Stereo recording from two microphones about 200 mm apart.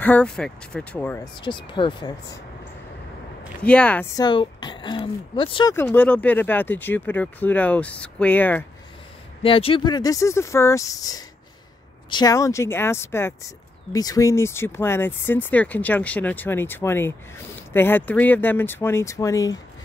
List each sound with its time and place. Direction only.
0.0 s speech: 5° left (ahead or behind)
1.4 s speech: 25° left (ahead or behind)
3.6 s speech: 5° left (ahead or behind)
4.2 s speech: 25° left (ahead or behind)
5.8 s speech: 10° left (ahead or behind)
9.4 s speech: 25° left (ahead or behind)